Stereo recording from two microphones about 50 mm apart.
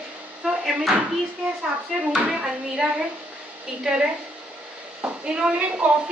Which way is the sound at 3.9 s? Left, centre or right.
Centre.